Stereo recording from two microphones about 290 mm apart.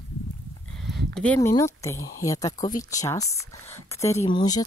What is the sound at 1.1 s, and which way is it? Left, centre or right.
Speech, centre.